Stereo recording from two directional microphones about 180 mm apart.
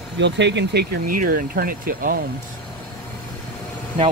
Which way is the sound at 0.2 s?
80° right.